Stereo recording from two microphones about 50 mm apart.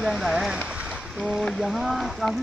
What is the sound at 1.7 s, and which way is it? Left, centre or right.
Speech, centre.